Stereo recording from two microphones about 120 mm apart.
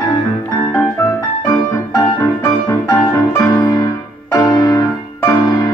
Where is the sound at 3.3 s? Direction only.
30° left (ahead or behind).